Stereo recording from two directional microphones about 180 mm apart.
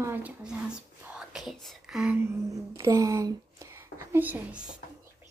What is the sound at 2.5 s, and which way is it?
Speech, 20° right (ahead or behind).